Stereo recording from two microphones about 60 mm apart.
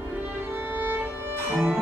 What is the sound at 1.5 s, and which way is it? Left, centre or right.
Music, right.